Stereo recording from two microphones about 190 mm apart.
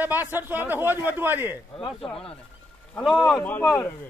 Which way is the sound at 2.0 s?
5° left (ahead or behind).